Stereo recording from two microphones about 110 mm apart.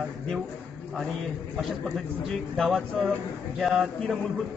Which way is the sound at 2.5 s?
5° left (ahead or behind).